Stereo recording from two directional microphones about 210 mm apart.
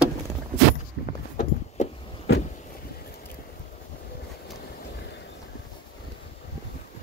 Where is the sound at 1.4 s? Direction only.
35° left (ahead or behind).